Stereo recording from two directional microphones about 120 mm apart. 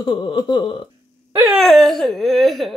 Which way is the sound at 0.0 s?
40° left (ahead or behind).